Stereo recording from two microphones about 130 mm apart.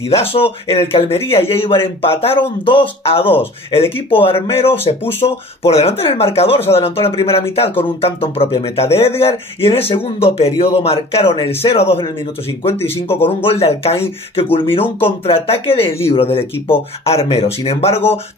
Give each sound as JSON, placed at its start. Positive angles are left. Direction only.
{"t": 0.1, "sound": "speech", "side_deg": 45}
{"t": 12.7, "sound": "speech", "side_deg": 20}
{"t": 13.1, "sound": "speech", "side_deg": 45}